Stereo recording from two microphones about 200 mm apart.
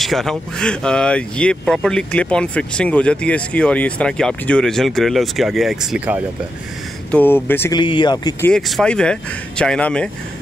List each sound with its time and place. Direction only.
0.0 s speech: centre (ahead or behind)
7.1 s speech: 10° left (ahead or behind)
7.8 s speech: 25° left (ahead or behind)
8.5 s speech: centre (ahead or behind)